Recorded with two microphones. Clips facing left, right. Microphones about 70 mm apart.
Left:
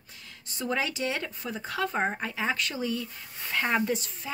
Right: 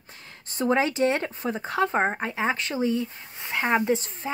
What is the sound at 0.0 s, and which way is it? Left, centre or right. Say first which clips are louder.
A woman's voice: right 3 dB; right.